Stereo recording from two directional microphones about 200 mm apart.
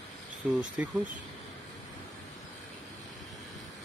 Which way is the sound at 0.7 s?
5° right (ahead or behind).